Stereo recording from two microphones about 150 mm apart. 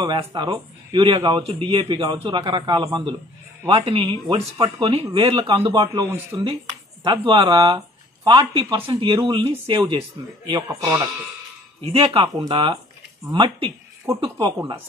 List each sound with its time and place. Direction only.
0.0 s speech: 30° right (ahead or behind)
11.8 s speech: 35° right (ahead or behind)